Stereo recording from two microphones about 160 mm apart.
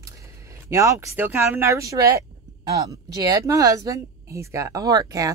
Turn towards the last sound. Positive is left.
turn(degrees=-20)  # may be behind; listen again after turning